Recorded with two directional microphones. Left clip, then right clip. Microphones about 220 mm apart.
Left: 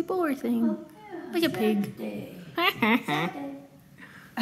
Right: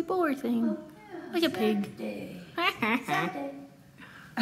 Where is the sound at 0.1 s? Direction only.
5° left (ahead or behind).